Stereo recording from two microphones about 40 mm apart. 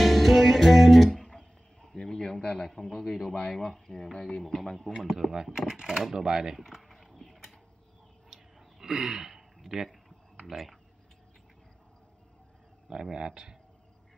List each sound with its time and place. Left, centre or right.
0.0 s music: centre
1.2 s a sound: centre
2.7 s speech: centre
5.3 s speech: centre
6.6 s horse: centre
8.3 s a sound: centre
10.4 s speech: centre
12.9 s speech: centre